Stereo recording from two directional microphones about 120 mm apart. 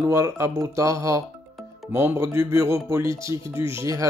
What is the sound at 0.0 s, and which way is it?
Speech, 25° right (ahead or behind).